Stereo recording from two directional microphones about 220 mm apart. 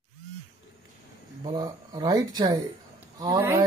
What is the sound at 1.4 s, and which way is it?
Speech, 20° right (ahead or behind).